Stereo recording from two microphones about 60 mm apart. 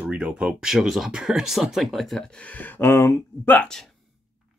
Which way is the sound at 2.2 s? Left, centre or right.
Left.